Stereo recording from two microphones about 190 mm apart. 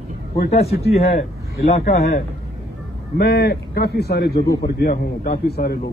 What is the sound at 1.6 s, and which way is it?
A man's voice, 55° left (ahead or behind).